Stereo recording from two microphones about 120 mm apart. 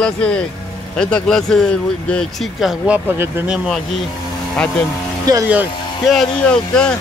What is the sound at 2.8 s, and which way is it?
Speech, 15° right (ahead or behind).